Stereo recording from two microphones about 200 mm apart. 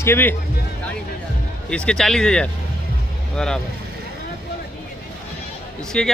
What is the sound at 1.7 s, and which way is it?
Speech, 5° left (ahead or behind).